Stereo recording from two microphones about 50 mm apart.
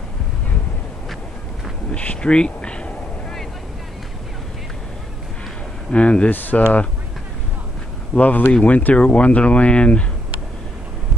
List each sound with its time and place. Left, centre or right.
1.9 s a sound: left
5.9 s speech: left
6.3 s speech: left
8.1 s speech: left